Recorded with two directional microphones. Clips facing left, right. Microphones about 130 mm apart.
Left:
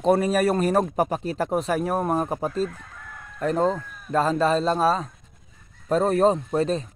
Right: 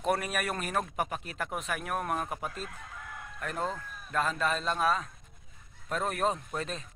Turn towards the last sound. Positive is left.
turn(degrees=35)  # may be behind; listen again after turning